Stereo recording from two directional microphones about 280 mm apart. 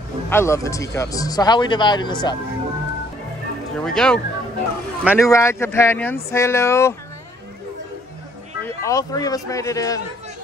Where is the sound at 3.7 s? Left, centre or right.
Centre.